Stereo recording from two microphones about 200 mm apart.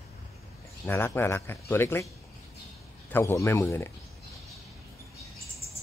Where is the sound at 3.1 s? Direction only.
15° left (ahead or behind).